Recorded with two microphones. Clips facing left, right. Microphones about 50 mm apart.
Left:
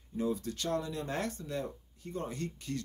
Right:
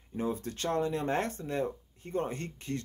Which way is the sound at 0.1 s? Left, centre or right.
Right.